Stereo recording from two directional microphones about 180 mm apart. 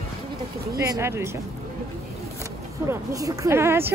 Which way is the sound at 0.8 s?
15° right (ahead or behind).